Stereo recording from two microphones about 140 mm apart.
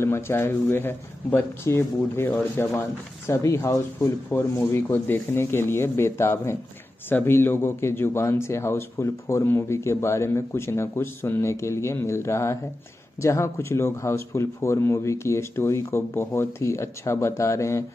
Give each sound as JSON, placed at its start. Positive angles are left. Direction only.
{"t": 0.0, "sound": "speech", "side_deg": 20}